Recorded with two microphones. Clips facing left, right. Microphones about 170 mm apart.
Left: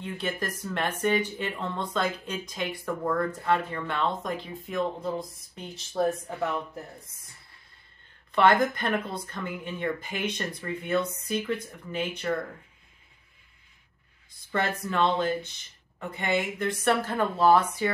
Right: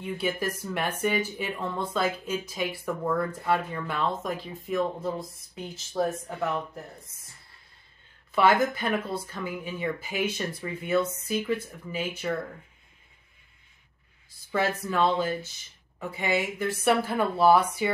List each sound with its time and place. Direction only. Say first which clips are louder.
0.0 s speech: right 3 dB; 10° right (ahead or behind)
8.3 s speech: left 1 dB; 10° right (ahead or behind)
14.5 s speech: right 1 dB; 5° right (ahead or behind)